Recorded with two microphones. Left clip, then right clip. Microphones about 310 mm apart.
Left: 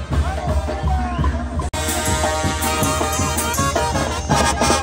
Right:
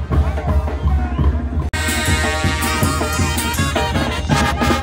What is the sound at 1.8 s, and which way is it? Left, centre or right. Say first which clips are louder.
Music: right 2 dB; left.